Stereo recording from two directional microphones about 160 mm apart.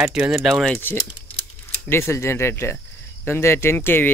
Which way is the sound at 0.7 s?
15° left (ahead or behind).